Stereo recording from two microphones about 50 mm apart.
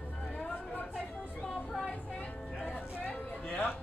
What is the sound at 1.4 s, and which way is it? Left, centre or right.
Speech, centre.